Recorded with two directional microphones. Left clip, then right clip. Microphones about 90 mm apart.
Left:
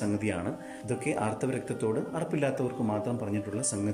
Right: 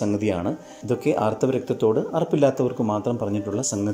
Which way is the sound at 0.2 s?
35° right (ahead or behind).